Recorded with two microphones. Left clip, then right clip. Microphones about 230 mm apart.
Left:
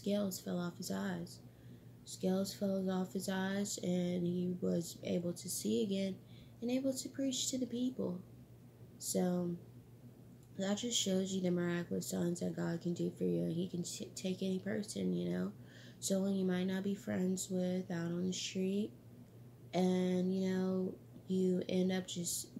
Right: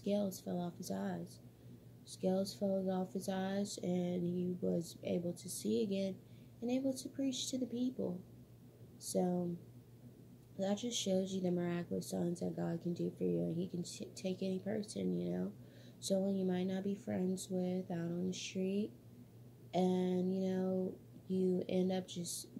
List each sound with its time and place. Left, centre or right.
0.0 s speech: centre
10.6 s speech: centre